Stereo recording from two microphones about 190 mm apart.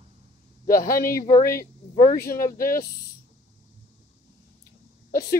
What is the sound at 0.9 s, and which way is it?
Speech, 50° left (ahead or behind).